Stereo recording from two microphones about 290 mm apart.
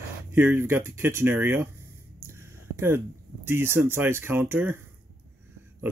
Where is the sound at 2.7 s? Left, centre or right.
Centre.